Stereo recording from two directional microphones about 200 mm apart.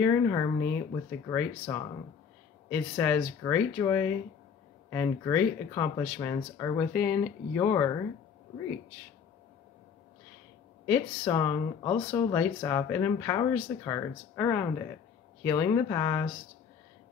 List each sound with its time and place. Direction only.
0.0 s speech: 15° left (ahead or behind)
10.9 s speech: 15° left (ahead or behind)